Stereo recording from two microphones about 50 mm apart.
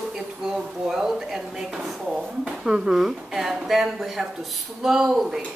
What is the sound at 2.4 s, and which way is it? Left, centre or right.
Speech, centre.